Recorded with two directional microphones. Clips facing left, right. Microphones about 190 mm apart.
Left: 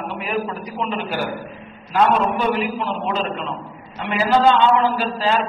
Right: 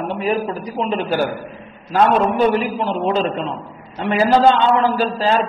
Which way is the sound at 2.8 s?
35° right (ahead or behind).